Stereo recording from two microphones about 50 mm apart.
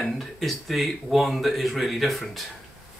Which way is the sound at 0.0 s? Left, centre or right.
Centre.